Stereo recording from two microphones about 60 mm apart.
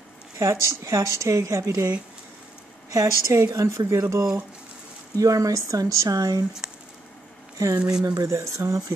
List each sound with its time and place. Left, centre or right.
0.4 s speech: right
2.9 s speech: right
5.1 s speech: right
6.6 s squish: centre
7.5 s speech: right
8.3 s speech: right